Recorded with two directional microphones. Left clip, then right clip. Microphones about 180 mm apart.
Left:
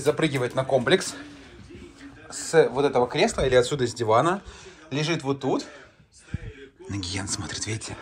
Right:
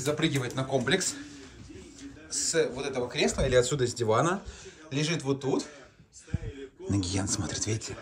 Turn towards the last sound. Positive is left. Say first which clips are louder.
# left 1 dB
turn(degrees=-25)  # may be behind; listen again after turning